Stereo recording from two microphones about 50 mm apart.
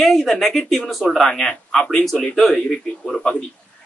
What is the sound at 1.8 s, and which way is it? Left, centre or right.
A man's voice, left.